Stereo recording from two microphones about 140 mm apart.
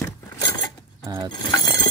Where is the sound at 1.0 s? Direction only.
25° right (ahead or behind).